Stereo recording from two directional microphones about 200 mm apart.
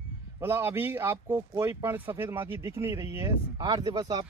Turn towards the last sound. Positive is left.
turn(degrees=-20)  # may be behind; listen again after turning